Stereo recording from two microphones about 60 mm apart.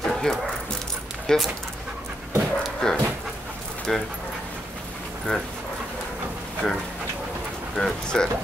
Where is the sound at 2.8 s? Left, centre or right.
Centre.